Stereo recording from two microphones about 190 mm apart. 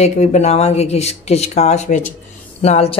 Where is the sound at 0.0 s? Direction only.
35° left (ahead or behind).